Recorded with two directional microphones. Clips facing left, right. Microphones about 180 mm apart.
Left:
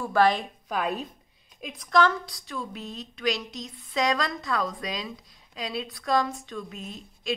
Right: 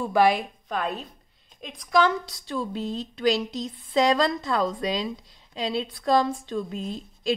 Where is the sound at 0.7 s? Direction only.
10° left (ahead or behind).